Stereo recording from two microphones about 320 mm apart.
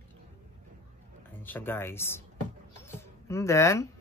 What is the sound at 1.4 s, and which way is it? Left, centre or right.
Speech, centre.